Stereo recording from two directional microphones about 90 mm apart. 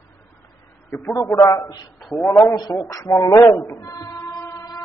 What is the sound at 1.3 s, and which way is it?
Speech, 45° left (ahead or behind).